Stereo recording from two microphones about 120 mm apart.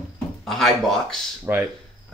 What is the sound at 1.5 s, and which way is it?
Speech, 15° right (ahead or behind).